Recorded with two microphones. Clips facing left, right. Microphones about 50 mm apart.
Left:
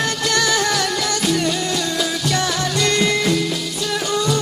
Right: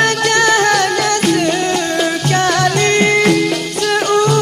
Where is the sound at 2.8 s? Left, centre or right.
Right.